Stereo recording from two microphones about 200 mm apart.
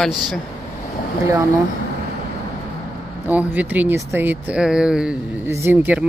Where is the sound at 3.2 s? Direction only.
10° right (ahead or behind).